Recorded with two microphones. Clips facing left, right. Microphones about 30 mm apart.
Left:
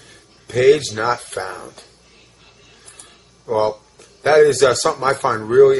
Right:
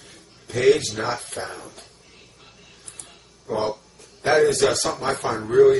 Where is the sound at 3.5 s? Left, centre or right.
Left.